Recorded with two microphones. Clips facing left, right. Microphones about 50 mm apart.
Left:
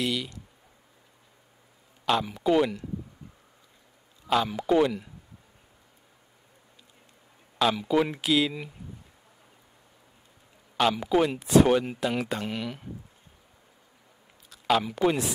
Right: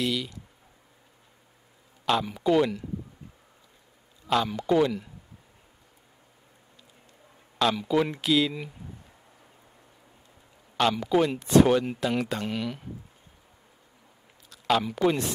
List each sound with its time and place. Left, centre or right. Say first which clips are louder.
0.0 s speech: right 1 dB; centre
2.0 s speech: even; centre
4.3 s a man's voice: even; centre
7.5 s speech: even; centre
11.1 s speech: even; centre
14.5 s a man's voice: even; centre